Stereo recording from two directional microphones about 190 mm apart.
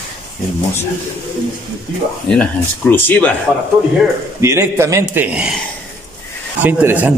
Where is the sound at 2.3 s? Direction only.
10° left (ahead or behind).